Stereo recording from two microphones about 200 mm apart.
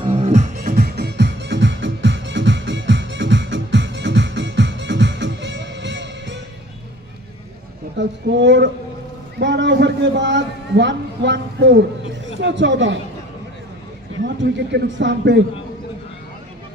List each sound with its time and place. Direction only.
0.0 s music: 35° right (ahead or behind); by 6.4 s 65° right (ahead or behind)
8.0 s a woman's voice: 60° right (ahead or behind)
9.4 s a sound: 60° right (ahead or behind)
12.4 s speech: 65° right (ahead or behind)
14.2 s speech: 60° right (ahead or behind)